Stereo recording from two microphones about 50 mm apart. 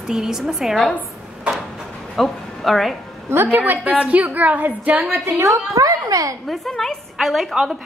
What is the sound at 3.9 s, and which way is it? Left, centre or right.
A woman's voice, right.